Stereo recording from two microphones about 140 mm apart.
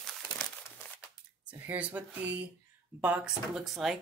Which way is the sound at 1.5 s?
10° right (ahead or behind).